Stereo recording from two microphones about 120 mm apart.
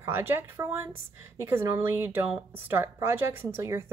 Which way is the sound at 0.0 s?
20° right (ahead or behind).